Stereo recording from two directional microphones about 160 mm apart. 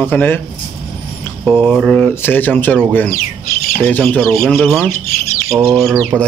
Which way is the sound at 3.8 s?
10° left (ahead or behind).